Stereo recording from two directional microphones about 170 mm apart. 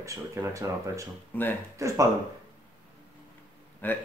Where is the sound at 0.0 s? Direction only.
15° right (ahead or behind).